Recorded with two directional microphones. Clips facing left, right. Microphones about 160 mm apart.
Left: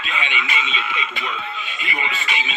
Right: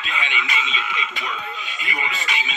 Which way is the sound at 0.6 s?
45° right (ahead or behind).